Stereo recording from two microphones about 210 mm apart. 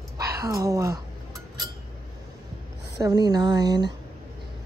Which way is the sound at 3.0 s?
20° right (ahead or behind).